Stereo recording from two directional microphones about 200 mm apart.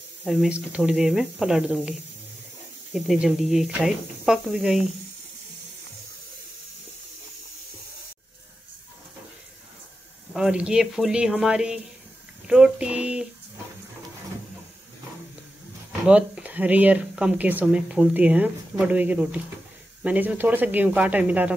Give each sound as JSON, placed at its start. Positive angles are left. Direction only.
{"t": 0.2, "sound": "speech", "side_deg": 0}
{"t": 10.3, "sound": "speech", "side_deg": -5}
{"t": 16.1, "sound": "speech", "side_deg": -5}